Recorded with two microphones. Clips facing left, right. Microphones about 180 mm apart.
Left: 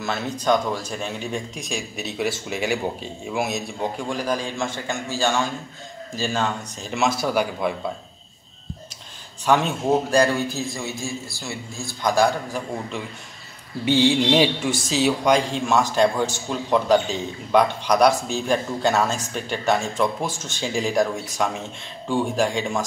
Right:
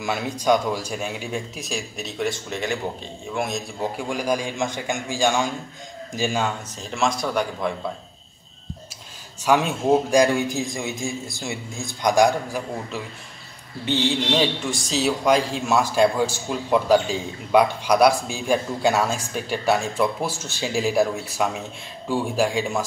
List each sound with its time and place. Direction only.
0.0 s speech: 10° right (ahead or behind)
4.1 s a man's voice: 10° right (ahead or behind)
6.8 s speech: 5° left (ahead or behind)
9.4 s a man's voice: 10° right (ahead or behind)
13.8 s a man's voice: 10° left (ahead or behind); by 22.8 s 5° right (ahead or behind)